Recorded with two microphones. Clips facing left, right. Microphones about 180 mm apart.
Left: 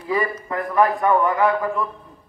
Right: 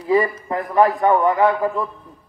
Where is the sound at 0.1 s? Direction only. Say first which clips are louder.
Right 5 dB; 25° right (ahead or behind).